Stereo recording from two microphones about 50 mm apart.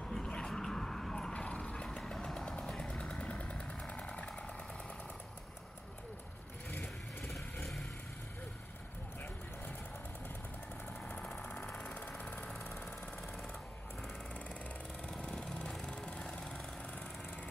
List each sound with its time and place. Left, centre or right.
0.0 s dog: centre
1.3 s vehicle: left
1.9 s vehicle: centre
2.9 s vehicle: left
6.7 s vehicle: left
11.5 s sewing machine: left
12.2 s jackhammer: left
15.0 s lawn mower: left